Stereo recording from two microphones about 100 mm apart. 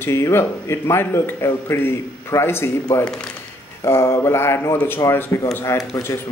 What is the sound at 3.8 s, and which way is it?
A man's voice, 25° left (ahead or behind).